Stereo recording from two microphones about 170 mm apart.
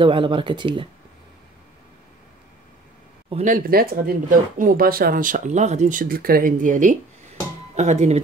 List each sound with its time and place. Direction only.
0.0 s speech: 30° right (ahead or behind)
3.4 s speech: 60° right (ahead or behind); by 8.2 s 40° right (ahead or behind)